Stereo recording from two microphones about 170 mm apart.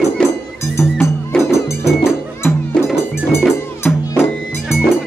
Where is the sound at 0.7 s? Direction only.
15° left (ahead or behind).